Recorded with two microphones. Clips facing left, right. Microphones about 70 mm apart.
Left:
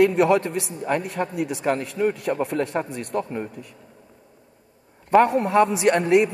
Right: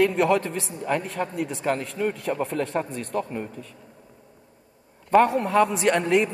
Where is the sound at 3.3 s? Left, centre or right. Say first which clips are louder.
Left 2 dB; left.